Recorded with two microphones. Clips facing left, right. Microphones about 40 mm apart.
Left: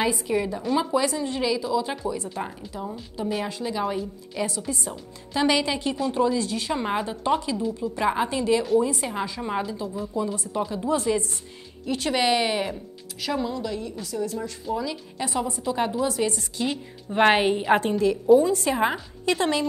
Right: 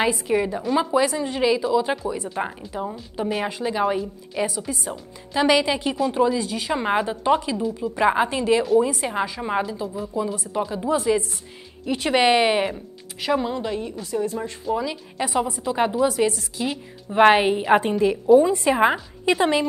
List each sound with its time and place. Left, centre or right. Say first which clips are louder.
0.3 s a woman's voice: right 3 dB; centre
4.5 s a woman's voice: right 2 dB; centre
11.8 s a woman's voice: right 4 dB; centre